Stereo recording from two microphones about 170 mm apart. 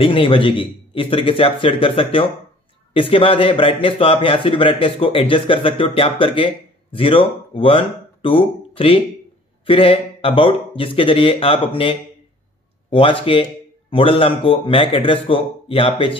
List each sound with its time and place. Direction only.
0.0 s speech: 30° left (ahead or behind)